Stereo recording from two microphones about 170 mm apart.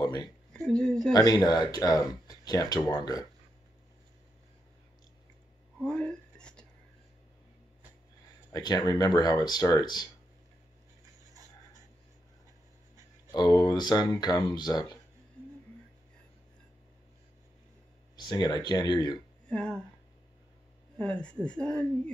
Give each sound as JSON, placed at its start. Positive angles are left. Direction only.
{"t": 0.0, "sound": "a sound", "side_deg": 25}
{"t": 0.5, "sound": "speech", "side_deg": 5}
{"t": 1.1, "sound": "speech", "side_deg": 20}
{"t": 5.8, "sound": "a sound", "side_deg": 5}
{"t": 8.5, "sound": "speech", "side_deg": 25}
{"t": 13.3, "sound": "speech", "side_deg": 20}
{"t": 18.2, "sound": "speech", "side_deg": 25}
{"t": 19.5, "sound": "speech", "side_deg": 5}
{"t": 21.0, "sound": "speech", "side_deg": 5}